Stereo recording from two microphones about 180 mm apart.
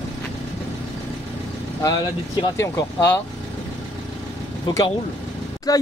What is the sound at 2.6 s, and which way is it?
Speech, 15° left (ahead or behind).